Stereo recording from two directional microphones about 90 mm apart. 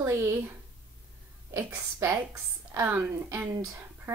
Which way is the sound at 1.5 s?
30° right (ahead or behind).